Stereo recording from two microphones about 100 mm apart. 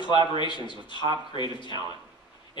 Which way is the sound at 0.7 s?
50° left (ahead or behind).